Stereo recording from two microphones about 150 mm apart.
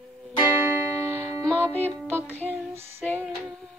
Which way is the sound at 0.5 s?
15° right (ahead or behind).